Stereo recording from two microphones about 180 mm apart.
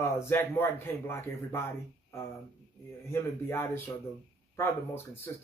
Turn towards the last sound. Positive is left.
turn(degrees=15)  # may be behind; listen again after turning